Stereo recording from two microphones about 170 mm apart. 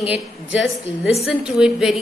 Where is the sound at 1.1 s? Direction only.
5° right (ahead or behind).